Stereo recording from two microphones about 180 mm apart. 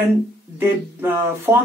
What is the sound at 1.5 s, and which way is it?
Speech, 15° right (ahead or behind).